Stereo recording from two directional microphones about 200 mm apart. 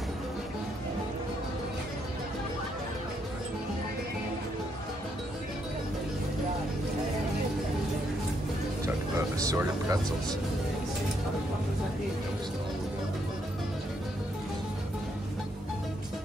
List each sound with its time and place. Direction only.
9.4 s speech: 15° right (ahead or behind)